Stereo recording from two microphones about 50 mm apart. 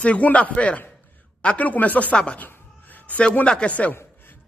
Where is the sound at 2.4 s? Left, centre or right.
Left.